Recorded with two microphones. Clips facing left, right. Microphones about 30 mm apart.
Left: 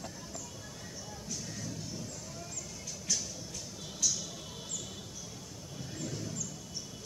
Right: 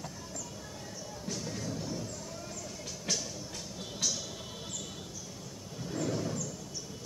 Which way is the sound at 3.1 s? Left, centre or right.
Right.